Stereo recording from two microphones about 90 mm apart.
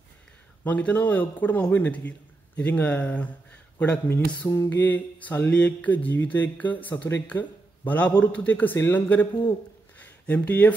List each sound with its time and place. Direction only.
0.7 s a man's voice: 15° left (ahead or behind)
4.1 s speech: 25° left (ahead or behind)
8.7 s speech: 30° left (ahead or behind)
9.9 s a sound: 15° left (ahead or behind)